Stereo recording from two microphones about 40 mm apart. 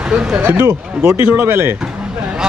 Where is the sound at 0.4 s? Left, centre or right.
Right.